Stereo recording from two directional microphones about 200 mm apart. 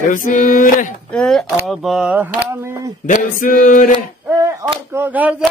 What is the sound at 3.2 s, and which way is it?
Chant, 45° left (ahead or behind).